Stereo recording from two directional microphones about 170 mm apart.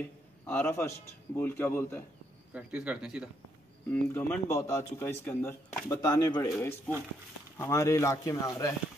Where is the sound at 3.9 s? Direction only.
10° left (ahead or behind).